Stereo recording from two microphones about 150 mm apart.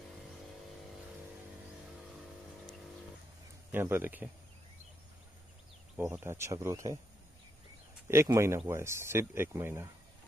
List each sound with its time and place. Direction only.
3.7 s speech: 15° right (ahead or behind)
5.9 s speech: 15° right (ahead or behind)
8.1 s speech: 20° right (ahead or behind)